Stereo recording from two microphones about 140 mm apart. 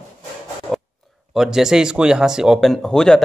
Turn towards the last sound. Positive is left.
turn(degrees=5)  # may be behind; listen again after turning